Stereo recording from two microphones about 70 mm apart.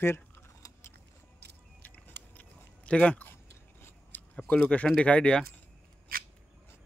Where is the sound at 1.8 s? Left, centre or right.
Left.